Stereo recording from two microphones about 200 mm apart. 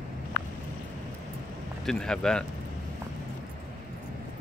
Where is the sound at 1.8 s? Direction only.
5° left (ahead or behind).